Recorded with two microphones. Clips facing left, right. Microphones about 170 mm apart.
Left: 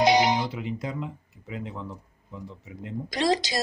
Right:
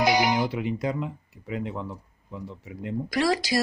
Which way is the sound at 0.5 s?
65° right (ahead or behind).